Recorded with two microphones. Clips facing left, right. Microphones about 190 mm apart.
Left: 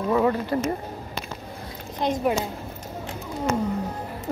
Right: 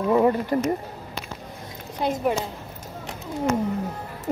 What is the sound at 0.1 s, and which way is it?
Speech, 20° right (ahead or behind).